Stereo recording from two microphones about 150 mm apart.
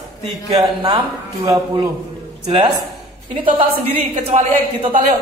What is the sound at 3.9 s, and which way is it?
Speech, 40° right (ahead or behind).